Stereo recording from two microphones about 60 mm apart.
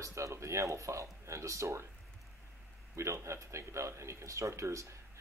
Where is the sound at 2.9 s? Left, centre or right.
Right.